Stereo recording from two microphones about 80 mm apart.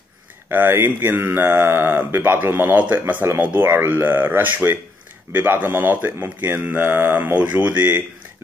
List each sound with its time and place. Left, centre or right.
0.5 s speech: right